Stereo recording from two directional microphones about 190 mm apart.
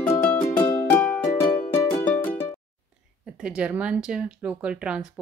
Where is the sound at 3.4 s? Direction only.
5° right (ahead or behind).